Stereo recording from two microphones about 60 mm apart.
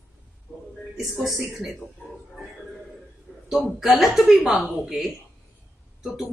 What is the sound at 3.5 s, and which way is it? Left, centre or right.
A woman's voice, centre.